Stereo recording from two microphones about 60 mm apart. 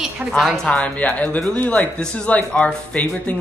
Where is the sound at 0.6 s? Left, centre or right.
Left.